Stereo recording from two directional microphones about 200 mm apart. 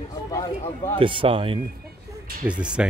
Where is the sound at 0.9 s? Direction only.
25° right (ahead or behind).